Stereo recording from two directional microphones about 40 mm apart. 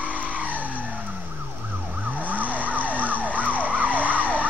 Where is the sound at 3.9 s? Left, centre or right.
Right.